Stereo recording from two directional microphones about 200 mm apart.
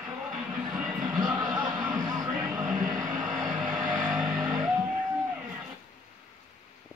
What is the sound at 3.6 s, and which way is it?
Music, 20° right (ahead or behind).